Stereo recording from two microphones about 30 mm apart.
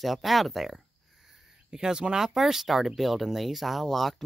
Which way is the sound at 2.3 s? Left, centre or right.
Centre.